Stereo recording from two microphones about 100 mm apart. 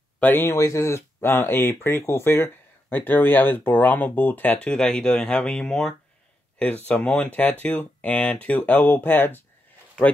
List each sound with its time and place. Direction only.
0.2 s speech: 20° left (ahead or behind)